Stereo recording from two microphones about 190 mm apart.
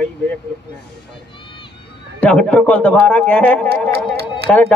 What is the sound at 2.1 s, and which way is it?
A man's voice, 5° left (ahead or behind).